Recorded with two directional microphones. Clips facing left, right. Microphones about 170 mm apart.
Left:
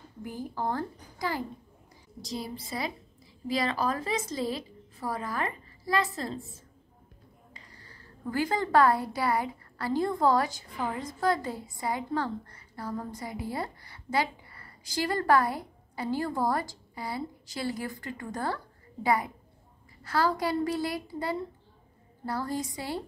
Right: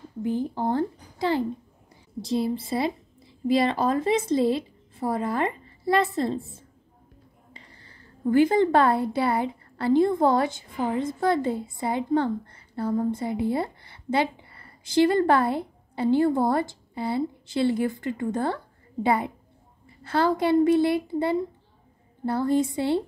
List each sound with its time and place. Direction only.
0.2 s a woman's voice: 25° right (ahead or behind)